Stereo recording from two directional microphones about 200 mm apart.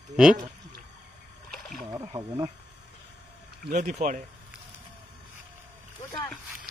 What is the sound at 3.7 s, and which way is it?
Speech, 35° right (ahead or behind).